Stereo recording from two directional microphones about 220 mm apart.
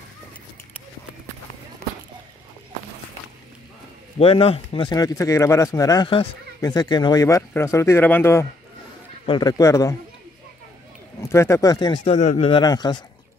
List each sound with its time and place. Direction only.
4.2 s speech: 25° left (ahead or behind)
11.1 s speech: 10° left (ahead or behind)